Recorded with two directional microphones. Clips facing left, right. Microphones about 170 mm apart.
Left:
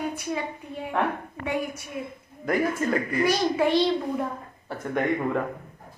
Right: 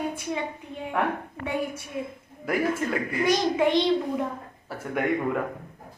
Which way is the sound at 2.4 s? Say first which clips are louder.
Left 1 dB; 5° right (ahead or behind).